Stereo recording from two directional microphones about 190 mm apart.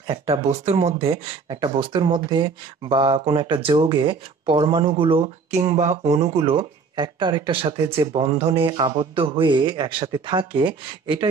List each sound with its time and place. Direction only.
0.0 s speech: 30° right (ahead or behind)